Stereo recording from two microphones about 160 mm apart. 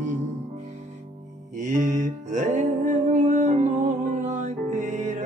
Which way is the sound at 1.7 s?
50° right (ahead or behind).